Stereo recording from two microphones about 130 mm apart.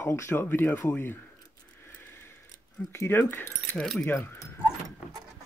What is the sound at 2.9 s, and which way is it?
Speech, 20° left (ahead or behind).